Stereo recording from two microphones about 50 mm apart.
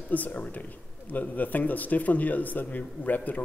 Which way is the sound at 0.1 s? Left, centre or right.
Left.